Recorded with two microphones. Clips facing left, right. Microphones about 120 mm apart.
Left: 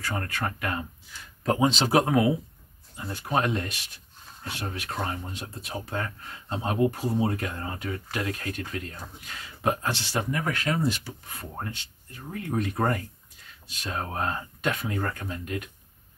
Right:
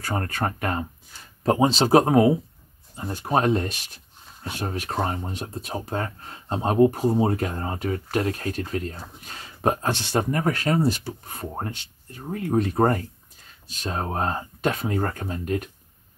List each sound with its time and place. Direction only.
0.0 s speech: 40° right (ahead or behind)